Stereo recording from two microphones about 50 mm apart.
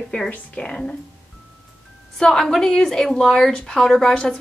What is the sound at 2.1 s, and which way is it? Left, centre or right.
A woman's voice, centre.